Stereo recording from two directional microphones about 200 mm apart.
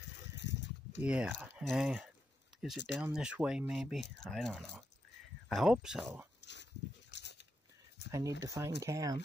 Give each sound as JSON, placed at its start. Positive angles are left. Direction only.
{"t": 0.4, "sound": "a sound", "side_deg": 60}
{"t": 1.0, "sound": "speech", "side_deg": -5}
{"t": 6.4, "sound": "dog", "side_deg": 60}
{"t": 8.1, "sound": "speech", "side_deg": -15}